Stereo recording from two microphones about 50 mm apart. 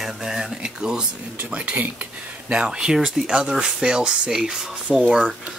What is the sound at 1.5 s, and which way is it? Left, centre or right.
Speech, right.